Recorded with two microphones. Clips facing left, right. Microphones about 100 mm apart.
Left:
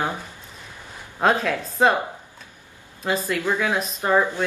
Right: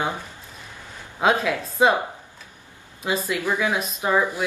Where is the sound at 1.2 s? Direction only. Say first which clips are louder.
Even; centre (ahead or behind).